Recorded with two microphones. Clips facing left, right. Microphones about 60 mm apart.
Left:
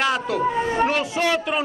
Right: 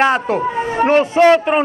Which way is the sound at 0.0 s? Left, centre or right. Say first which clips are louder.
Right 6 dB; right.